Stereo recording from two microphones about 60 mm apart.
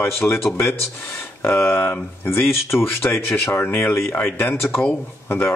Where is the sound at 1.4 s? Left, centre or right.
Left.